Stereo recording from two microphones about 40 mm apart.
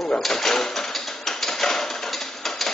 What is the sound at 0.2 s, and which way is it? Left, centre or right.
Cash register, centre.